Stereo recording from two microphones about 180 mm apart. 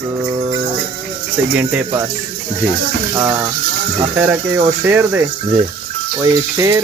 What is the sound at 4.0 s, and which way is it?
Speech, 10° right (ahead or behind).